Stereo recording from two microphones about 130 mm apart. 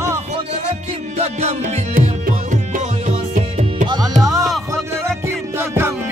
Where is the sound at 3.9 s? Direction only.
30° right (ahead or behind).